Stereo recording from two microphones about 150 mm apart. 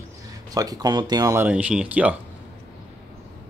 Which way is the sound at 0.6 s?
25° right (ahead or behind).